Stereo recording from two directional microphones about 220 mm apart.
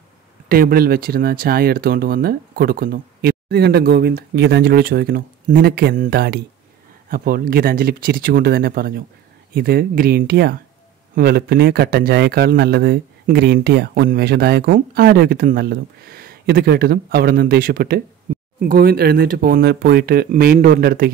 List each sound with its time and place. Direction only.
0.5 s speech: 40° right (ahead or behind)